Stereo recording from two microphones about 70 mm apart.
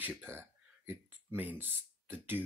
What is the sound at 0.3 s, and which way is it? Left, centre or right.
Speech, right.